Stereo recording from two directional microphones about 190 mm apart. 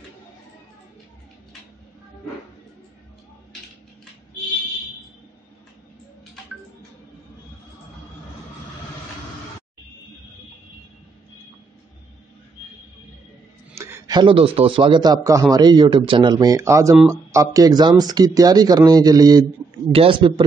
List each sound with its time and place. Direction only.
13.7 s a man's voice: 15° right (ahead or behind)